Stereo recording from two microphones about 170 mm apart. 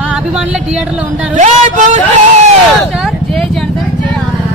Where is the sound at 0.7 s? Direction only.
10° right (ahead or behind).